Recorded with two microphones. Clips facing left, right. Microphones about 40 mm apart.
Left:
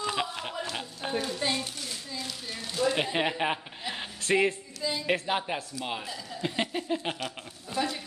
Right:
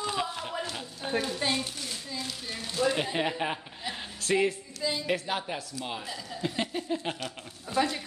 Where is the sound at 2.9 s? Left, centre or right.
Left.